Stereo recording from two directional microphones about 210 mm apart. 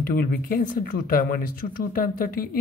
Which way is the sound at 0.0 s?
40° left (ahead or behind).